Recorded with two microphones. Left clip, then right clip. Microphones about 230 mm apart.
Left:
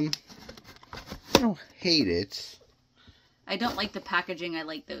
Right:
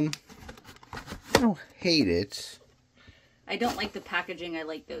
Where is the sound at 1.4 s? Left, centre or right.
Centre.